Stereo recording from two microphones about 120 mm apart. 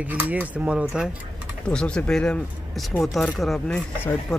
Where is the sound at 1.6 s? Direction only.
10° left (ahead or behind).